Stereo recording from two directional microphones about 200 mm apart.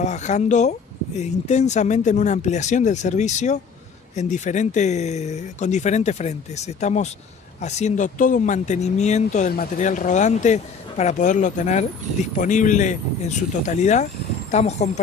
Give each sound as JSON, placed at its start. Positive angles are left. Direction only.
{"t": 0.0, "sound": "speech", "side_deg": 35}